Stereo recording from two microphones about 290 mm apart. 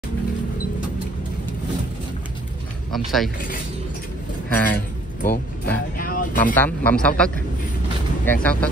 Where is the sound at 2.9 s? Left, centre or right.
Centre.